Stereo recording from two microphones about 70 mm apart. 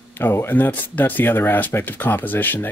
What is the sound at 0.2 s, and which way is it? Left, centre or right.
Speech, left.